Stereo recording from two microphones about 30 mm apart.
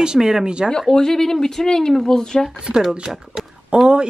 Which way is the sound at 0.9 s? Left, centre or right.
Centre.